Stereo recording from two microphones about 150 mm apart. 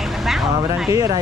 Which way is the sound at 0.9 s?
20° right (ahead or behind).